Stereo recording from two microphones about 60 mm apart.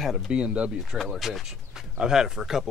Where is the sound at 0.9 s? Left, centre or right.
Centre.